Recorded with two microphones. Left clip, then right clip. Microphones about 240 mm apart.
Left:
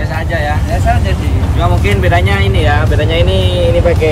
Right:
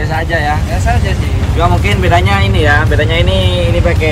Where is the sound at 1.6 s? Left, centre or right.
Centre.